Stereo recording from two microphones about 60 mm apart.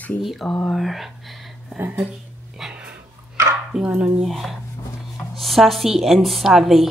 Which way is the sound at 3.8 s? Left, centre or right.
Right.